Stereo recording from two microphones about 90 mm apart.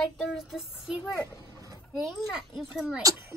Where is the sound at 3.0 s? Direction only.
40° right (ahead or behind).